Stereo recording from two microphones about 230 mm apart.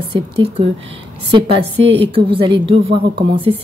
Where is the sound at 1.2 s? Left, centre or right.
Right.